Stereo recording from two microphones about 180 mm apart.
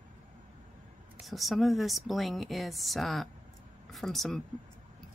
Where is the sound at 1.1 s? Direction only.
Centre (ahead or behind).